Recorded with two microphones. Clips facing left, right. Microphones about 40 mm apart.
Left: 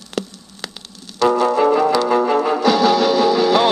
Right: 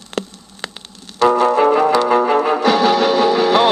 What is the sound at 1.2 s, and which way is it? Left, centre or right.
Music, right.